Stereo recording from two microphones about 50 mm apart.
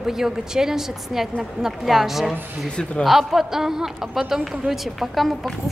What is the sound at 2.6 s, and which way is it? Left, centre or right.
Speech, centre.